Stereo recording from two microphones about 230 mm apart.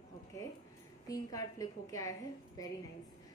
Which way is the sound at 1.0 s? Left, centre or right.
Centre.